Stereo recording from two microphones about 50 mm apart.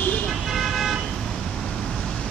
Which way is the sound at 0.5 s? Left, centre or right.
Centre.